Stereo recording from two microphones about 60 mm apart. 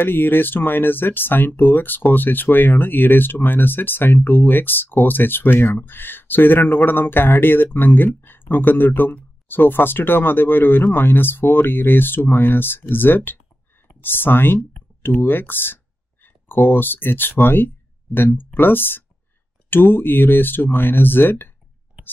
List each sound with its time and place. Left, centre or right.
0.0 s speech: left